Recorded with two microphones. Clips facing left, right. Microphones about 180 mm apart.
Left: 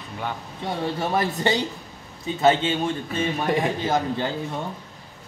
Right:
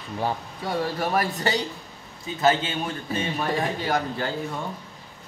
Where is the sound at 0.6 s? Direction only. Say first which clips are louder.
Left 2 dB; 25° left (ahead or behind).